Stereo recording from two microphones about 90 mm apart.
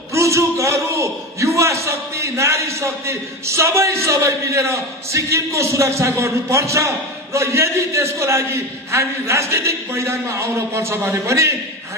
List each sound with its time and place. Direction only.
0.1 s a man's voice: 35° right (ahead or behind)